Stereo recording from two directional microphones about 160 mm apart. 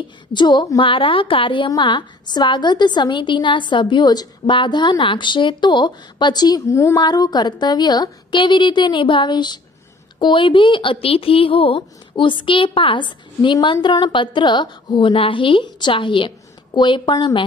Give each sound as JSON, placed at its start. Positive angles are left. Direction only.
{"t": 0.3, "sound": "a woman's voice", "side_deg": 30}